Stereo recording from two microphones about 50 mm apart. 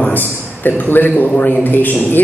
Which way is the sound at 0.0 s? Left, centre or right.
Left.